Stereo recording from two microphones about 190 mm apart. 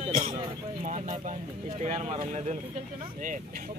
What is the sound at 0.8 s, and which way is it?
Speech, 40° right (ahead or behind).